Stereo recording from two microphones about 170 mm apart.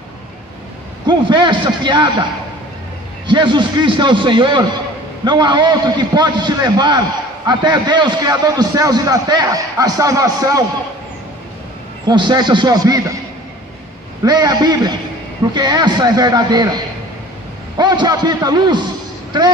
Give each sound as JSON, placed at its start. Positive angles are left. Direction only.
{"t": 1.0, "sound": "a man's voice", "side_deg": -30}
{"t": 3.3, "sound": "a man's voice", "side_deg": -30}
{"t": 12.1, "sound": "a man's voice", "side_deg": -25}
{"t": 14.2, "sound": "a man's voice", "side_deg": -25}